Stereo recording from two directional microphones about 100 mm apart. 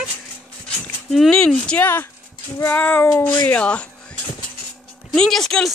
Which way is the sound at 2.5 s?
20° left (ahead or behind).